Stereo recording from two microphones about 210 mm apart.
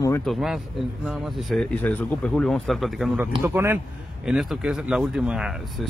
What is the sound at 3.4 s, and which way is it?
A man's voice, 10° right (ahead or behind).